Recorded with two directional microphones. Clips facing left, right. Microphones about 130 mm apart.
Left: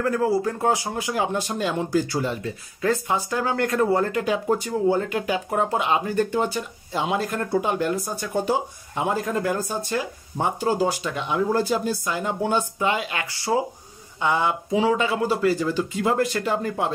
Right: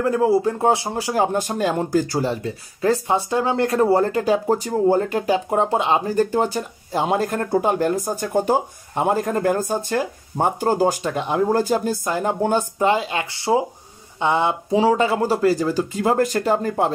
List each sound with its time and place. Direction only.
0.0 s speech: 25° right (ahead or behind)